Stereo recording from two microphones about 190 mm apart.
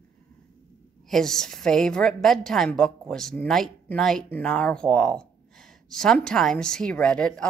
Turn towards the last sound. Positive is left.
turn(degrees=5)  # may be behind; listen again after turning